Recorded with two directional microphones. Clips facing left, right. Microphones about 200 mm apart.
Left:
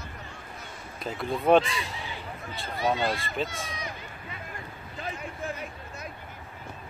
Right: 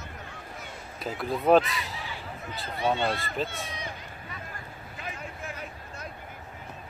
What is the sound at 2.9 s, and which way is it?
Speech, 5° left (ahead or behind).